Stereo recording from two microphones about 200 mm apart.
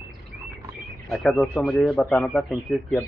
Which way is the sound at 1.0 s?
Centre (ahead or behind).